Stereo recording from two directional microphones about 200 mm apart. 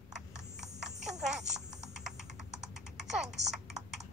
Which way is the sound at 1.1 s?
35° right (ahead or behind).